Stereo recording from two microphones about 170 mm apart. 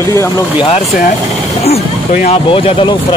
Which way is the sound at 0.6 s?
35° left (ahead or behind).